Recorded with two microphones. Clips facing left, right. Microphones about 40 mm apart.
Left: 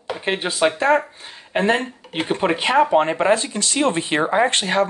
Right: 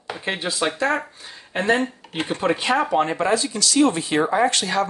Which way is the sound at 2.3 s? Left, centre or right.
Left.